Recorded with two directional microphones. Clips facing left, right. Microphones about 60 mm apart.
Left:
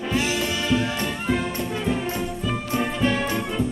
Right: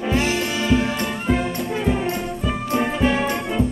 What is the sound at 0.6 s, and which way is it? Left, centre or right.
Music, centre.